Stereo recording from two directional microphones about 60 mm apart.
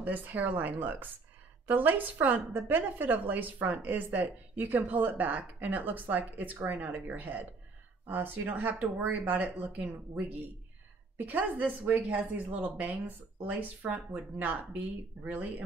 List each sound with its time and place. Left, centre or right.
0.0 s a woman's voice: right